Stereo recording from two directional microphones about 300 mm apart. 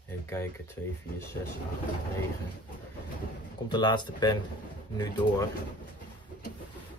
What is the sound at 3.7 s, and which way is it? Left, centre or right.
Speech, centre.